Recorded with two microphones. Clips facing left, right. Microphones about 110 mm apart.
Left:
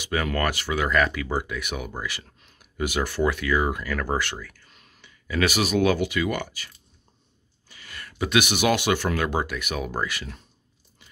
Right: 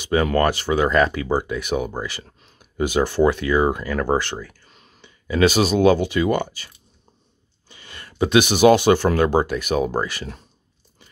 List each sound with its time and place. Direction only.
0.0 s speech: 30° right (ahead or behind)